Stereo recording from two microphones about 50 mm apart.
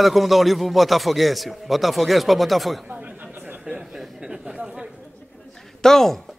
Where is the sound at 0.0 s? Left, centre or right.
Centre.